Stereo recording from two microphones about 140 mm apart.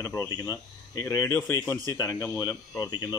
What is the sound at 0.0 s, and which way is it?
Speech, 20° left (ahead or behind).